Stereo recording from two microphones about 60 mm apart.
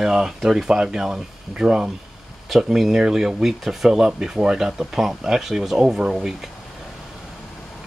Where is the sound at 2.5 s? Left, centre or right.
Centre.